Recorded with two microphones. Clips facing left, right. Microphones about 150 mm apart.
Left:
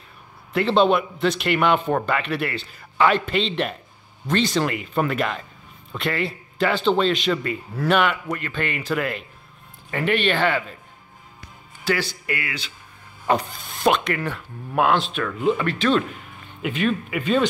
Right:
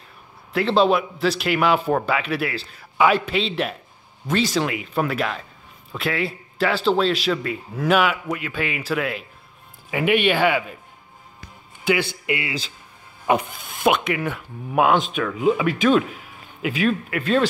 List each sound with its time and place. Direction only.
0.5 s a man's voice: centre (ahead or behind)
12.3 s speech: 25° right (ahead or behind)
13.3 s a man's voice: 10° right (ahead or behind)